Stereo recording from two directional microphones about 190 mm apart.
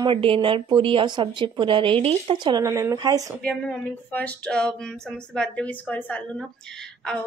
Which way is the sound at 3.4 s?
5° left (ahead or behind).